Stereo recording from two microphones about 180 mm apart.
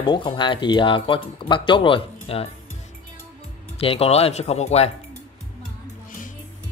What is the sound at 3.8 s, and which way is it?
Speech, 35° left (ahead or behind).